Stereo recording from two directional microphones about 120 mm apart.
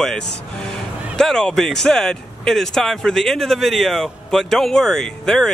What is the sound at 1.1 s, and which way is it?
Speech, 5° left (ahead or behind).